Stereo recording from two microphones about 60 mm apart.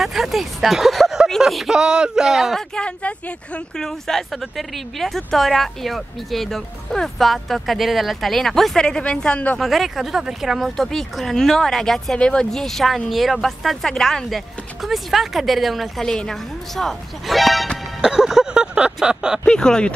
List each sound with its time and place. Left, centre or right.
0.0 s a woman's voice: centre
2.5 s a woman's voice: centre
3.7 s a woman's voice: centre
9.6 s a woman's voice: centre
16.0 s a woman's voice: centre
18.0 s a sound: centre
19.4 s a woman's voice: centre